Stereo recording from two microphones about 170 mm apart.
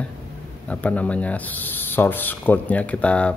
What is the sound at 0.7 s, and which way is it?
Speech, 10° left (ahead or behind).